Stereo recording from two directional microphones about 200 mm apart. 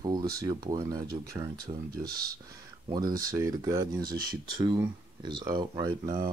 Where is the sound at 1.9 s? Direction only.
50° right (ahead or behind).